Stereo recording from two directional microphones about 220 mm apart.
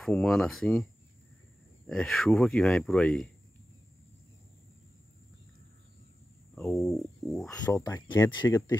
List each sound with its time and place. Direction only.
0.0 s speech: centre (ahead or behind)
1.9 s speech: centre (ahead or behind)
6.5 s a sound: centre (ahead or behind)
7.4 s speech: 10° left (ahead or behind)